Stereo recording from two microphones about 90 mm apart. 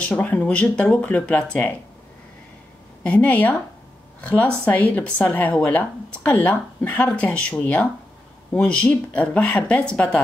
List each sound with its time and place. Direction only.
0.0 s speech: 20° left (ahead or behind)
3.0 s speech: 15° left (ahead or behind)